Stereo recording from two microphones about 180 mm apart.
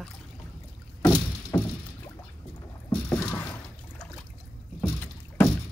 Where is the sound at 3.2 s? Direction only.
15° left (ahead or behind).